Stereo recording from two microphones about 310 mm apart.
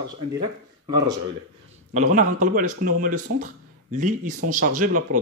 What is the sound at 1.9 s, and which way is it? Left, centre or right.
Speech, right.